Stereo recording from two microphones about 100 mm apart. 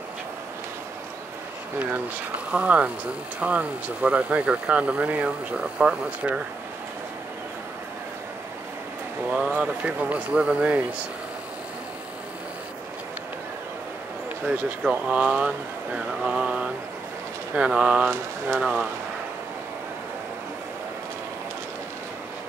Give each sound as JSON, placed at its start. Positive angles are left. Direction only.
{"t": 2.5, "sound": "speech", "side_deg": -15}
{"t": 9.3, "sound": "speech", "side_deg": -15}
{"t": 14.4, "sound": "speech", "side_deg": -15}
{"t": 16.2, "sound": "mantra", "side_deg": -10}
{"t": 17.6, "sound": "speech", "side_deg": -10}